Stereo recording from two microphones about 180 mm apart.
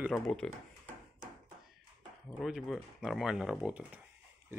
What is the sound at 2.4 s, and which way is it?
Speech, centre (ahead or behind).